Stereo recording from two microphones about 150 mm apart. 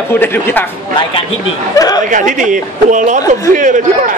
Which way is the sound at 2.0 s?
60° right (ahead or behind).